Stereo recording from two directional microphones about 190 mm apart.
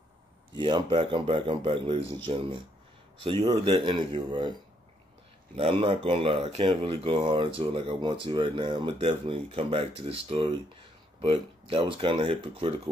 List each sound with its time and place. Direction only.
0.6 s speech: 25° right (ahead or behind)
5.6 s speech: 30° right (ahead or behind)